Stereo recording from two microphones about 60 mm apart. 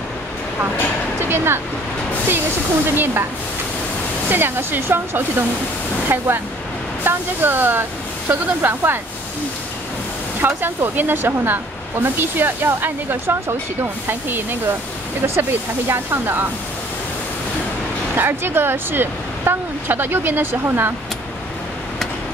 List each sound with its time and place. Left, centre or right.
1.3 s speech: right
2.9 s speech: right
4.3 s speech: right
10.4 s speech: right
18.1 s speech: right